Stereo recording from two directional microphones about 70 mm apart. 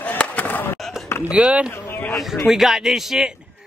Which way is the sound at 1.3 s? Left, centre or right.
Centre.